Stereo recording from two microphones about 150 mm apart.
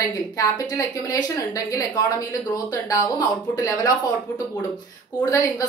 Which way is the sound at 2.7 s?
25° left (ahead or behind).